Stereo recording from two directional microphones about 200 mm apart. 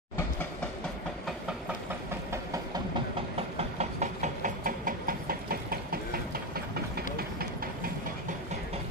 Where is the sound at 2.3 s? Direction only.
15° right (ahead or behind).